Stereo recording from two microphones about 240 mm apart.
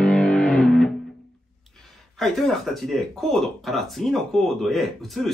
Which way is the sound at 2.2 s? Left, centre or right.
Centre.